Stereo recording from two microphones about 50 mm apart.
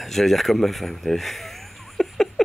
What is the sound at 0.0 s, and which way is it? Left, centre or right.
Speech, centre.